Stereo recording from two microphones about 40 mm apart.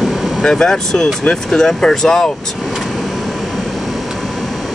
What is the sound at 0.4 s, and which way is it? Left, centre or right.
Speech, centre.